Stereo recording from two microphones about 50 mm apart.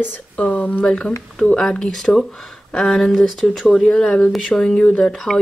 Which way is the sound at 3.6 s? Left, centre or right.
Centre.